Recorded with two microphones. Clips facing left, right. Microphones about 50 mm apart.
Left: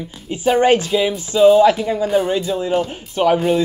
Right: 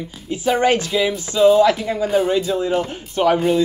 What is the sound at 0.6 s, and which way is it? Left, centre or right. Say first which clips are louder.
Speech: left 4 dB; left.